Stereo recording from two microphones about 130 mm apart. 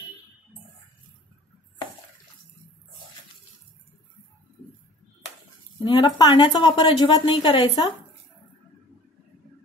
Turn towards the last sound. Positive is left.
turn(degrees=40)  # may be behind; listen again after turning